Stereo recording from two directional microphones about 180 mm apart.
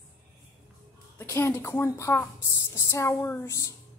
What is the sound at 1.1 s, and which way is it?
A woman's voice, 15° left (ahead or behind).